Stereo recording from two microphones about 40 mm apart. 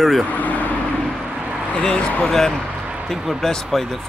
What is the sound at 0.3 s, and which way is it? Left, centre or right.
Speech, left.